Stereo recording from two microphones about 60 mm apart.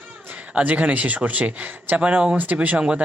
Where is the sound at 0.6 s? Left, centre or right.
Right.